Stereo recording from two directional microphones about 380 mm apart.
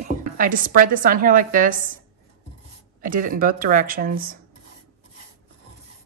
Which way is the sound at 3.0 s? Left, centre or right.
Right.